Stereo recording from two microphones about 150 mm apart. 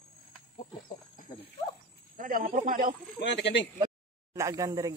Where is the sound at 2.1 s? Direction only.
65° right (ahead or behind).